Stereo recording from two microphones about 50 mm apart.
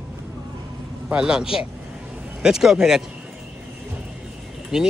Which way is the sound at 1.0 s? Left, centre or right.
Centre.